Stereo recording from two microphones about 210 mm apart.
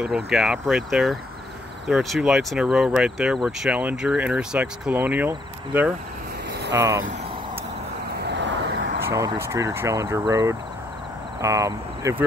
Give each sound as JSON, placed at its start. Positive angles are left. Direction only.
{"t": 0.0, "sound": "speech", "side_deg": -5}
{"t": 8.2, "sound": "vehicle", "side_deg": -55}
{"t": 9.0, "sound": "speech", "side_deg": -15}